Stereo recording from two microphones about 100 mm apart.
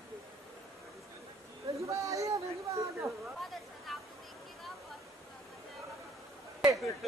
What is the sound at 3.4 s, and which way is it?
Chatter, centre (ahead or behind).